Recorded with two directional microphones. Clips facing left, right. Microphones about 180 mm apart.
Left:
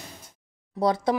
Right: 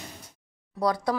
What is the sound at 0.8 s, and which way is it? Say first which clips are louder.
Speech: left 2 dB; 25° left (ahead or behind).